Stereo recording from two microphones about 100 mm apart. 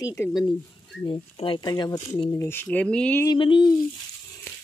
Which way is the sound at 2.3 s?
25° left (ahead or behind).